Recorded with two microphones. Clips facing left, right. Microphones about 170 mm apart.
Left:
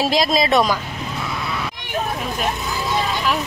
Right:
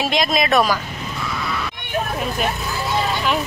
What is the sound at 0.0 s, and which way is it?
Speech, 30° left (ahead or behind).